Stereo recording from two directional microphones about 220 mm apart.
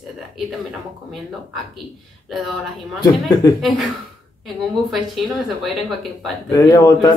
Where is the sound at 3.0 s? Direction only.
15° left (ahead or behind).